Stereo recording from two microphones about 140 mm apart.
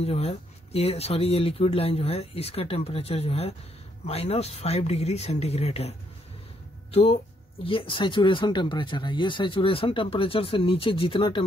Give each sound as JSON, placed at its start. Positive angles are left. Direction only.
{"t": 0.0, "sound": "speech", "side_deg": 45}